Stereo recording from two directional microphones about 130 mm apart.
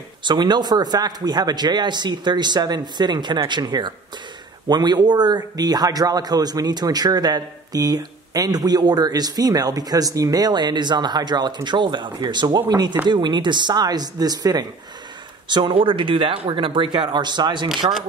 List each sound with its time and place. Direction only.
0.2 s a man's voice: 35° right (ahead or behind)